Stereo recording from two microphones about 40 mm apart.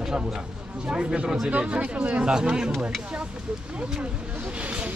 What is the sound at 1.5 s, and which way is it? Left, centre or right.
Speech, right.